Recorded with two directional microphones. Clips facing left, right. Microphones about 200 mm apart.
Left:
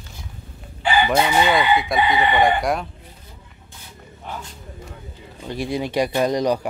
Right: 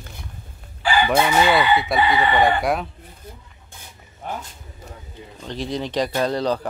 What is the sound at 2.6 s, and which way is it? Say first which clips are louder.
Speech: even; centre (ahead or behind).